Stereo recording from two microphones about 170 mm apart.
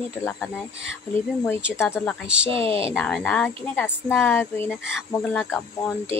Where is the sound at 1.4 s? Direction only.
15° left (ahead or behind).